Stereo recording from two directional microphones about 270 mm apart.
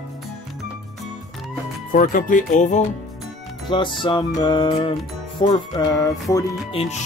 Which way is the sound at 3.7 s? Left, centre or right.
Centre.